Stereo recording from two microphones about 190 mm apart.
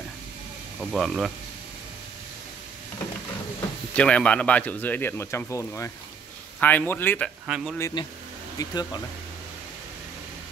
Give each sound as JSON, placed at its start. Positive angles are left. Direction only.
{"t": 0.7, "sound": "speech", "side_deg": 0}
{"t": 3.9, "sound": "speech", "side_deg": 5}
{"t": 7.4, "sound": "speech", "side_deg": -5}
{"t": 7.7, "sound": "speech", "side_deg": 15}